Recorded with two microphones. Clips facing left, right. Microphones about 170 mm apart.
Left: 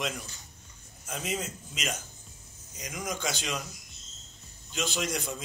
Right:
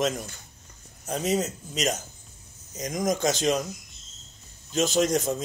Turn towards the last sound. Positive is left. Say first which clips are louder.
# right 10 dB
turn(degrees=-40)  # may be behind; listen again after turning